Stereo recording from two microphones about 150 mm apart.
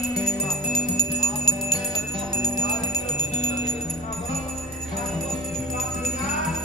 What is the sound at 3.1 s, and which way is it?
Music, 50° left (ahead or behind).